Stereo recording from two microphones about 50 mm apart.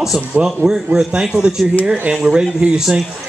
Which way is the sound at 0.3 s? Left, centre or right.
Right.